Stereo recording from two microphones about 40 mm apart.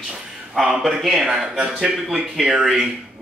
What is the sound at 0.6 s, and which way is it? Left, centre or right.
Speech, centre.